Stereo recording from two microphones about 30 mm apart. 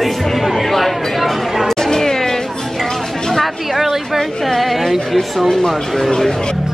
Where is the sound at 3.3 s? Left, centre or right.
Centre.